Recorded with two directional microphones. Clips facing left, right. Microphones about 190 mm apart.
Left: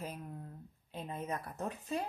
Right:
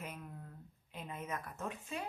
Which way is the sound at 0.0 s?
35° left (ahead or behind).